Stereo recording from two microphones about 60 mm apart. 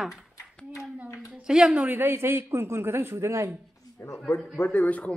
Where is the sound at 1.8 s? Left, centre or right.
Right.